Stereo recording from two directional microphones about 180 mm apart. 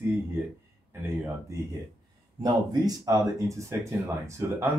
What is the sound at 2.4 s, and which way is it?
Speech, 20° right (ahead or behind).